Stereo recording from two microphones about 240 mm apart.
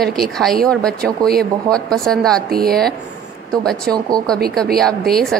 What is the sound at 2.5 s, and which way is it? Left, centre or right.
Speech, right.